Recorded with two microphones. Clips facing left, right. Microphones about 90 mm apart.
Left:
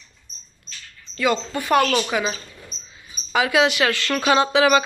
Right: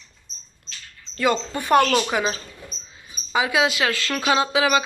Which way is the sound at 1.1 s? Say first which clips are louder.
Even; 40° right (ahead or behind).